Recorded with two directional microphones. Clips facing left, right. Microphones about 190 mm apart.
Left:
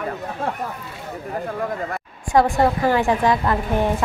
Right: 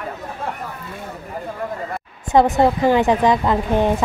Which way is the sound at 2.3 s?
20° right (ahead or behind).